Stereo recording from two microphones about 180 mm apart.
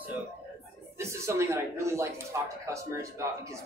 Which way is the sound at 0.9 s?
15° right (ahead or behind).